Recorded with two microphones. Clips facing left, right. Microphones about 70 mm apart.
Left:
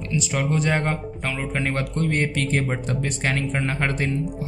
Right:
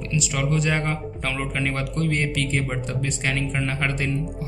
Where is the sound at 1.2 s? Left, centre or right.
Centre.